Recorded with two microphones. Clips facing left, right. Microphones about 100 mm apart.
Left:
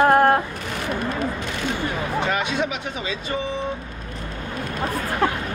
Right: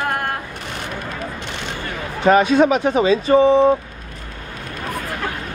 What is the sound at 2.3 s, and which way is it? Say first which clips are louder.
Speech: right 11 dB; 40° right (ahead or behind).